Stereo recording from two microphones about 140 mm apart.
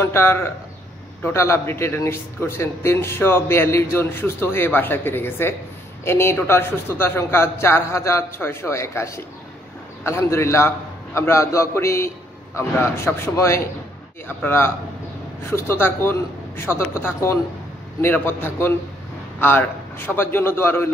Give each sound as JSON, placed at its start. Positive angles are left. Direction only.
{"t": 0.0, "sound": "a man's voice", "side_deg": 20}